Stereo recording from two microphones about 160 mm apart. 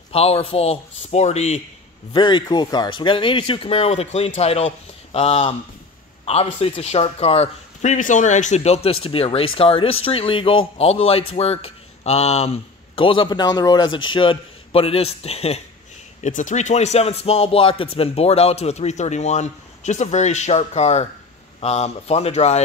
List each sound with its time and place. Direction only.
0.1 s speech: 40° left (ahead or behind)
2.1 s speech: 30° left (ahead or behind)
16.2 s speech: 55° left (ahead or behind)